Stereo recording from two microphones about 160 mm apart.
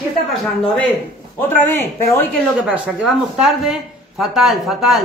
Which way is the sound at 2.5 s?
10° right (ahead or behind).